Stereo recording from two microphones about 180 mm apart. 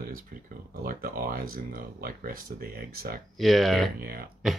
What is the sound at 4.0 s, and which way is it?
Speech, 55° right (ahead or behind).